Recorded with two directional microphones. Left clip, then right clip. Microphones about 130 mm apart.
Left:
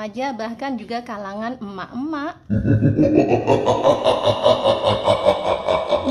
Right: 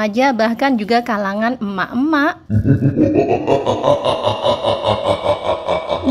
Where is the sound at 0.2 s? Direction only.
40° right (ahead or behind).